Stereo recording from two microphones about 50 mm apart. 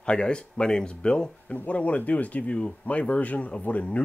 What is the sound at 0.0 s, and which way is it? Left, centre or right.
Speech, centre.